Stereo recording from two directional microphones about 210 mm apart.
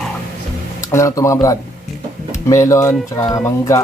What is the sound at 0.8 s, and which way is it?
Speech, 15° left (ahead or behind).